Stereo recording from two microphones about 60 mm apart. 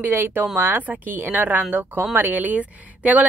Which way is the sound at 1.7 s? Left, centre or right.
Right.